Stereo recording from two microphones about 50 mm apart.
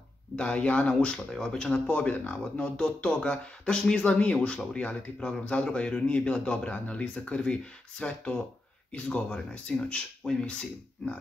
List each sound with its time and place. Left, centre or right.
0.4 s speech: left
1.7 s speech: left